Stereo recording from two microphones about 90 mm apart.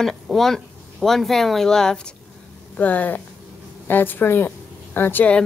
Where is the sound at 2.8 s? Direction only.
20° left (ahead or behind).